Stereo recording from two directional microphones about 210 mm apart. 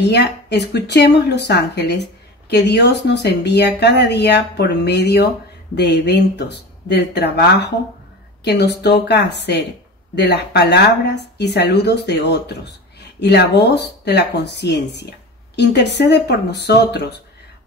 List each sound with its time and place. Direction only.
0.0 s speech: 55° left (ahead or behind)